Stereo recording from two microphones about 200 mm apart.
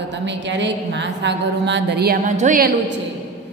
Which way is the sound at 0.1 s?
60° right (ahead or behind).